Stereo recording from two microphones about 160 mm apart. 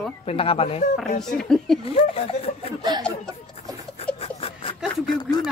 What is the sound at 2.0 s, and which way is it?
Speech, 35° left (ahead or behind).